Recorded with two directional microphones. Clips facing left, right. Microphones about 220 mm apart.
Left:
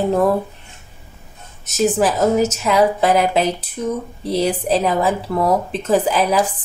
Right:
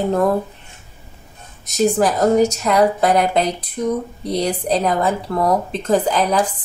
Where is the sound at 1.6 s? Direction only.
5° left (ahead or behind).